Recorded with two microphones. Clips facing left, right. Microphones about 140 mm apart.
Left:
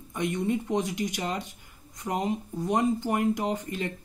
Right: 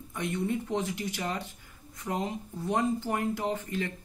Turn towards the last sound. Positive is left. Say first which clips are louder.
# left 1 dB
turn(degrees=20)  # may be behind; listen again after turning